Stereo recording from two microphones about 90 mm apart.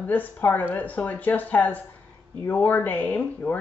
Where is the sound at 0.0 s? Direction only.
20° left (ahead or behind).